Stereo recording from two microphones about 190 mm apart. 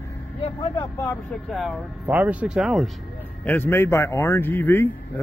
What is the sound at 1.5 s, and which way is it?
Speech, centre (ahead or behind).